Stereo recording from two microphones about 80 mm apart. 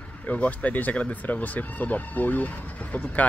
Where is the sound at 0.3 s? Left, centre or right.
Centre.